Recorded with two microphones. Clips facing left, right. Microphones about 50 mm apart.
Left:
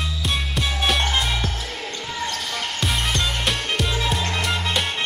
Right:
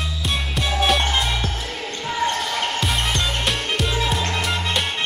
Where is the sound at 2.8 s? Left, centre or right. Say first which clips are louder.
Right 1 dB; centre.